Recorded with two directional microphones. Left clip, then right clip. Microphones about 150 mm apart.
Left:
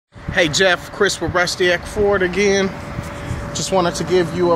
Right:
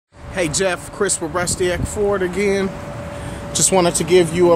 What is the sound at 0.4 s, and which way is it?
Speech, 5° right (ahead or behind).